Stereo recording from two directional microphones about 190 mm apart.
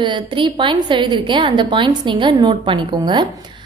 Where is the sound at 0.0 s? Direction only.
25° right (ahead or behind).